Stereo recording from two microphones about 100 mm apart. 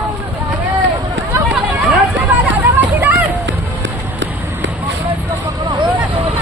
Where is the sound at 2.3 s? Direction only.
15° right (ahead or behind).